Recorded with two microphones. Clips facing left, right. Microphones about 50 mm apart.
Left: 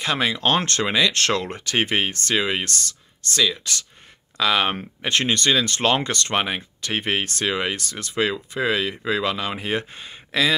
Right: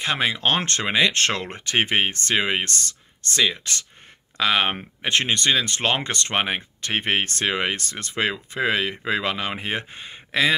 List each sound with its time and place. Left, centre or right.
0.0 s speech: right